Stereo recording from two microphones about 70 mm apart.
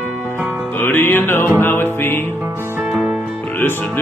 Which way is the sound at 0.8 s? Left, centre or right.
Left.